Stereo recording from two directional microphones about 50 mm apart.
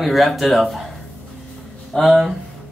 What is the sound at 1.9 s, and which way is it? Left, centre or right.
Speech, centre.